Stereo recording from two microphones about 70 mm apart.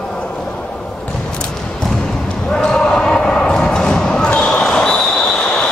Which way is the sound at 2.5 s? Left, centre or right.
Centre.